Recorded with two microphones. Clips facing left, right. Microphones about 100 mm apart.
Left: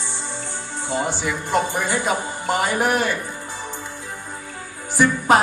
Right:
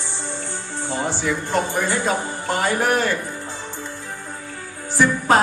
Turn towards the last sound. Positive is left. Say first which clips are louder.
# left 1 dB
turn(degrees=15)  # may be behind; listen again after turning